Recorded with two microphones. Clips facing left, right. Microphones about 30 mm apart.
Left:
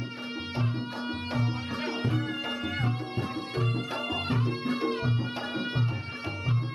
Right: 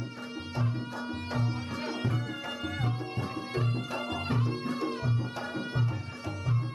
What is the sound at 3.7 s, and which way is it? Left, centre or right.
Music, left.